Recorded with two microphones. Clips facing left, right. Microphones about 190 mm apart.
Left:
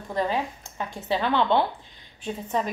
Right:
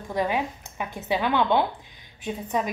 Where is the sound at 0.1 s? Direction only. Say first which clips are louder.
Right 1 dB; 15° right (ahead or behind).